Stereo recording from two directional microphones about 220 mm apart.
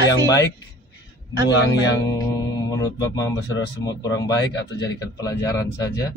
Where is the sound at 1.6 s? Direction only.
55° left (ahead or behind).